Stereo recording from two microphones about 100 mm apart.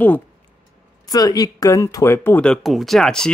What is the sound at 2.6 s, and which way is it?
Speech, centre (ahead or behind).